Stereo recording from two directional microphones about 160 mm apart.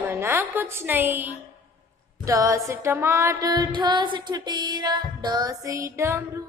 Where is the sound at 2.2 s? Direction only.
20° right (ahead or behind).